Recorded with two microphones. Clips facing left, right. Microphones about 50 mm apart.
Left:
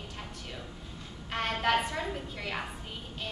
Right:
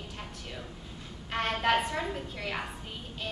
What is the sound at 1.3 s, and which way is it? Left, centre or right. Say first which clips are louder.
A woman's voice: right 1 dB; centre.